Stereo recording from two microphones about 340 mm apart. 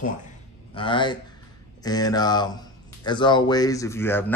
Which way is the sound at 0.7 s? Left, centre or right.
Centre.